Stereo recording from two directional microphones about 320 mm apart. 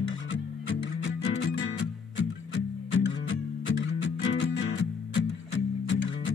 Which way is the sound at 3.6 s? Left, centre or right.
Left.